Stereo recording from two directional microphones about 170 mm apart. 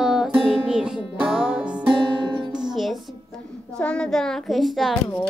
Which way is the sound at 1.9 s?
30° right (ahead or behind).